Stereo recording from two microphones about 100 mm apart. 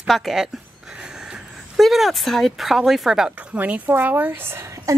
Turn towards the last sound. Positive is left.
turn(degrees=-25)  # may be behind; listen again after turning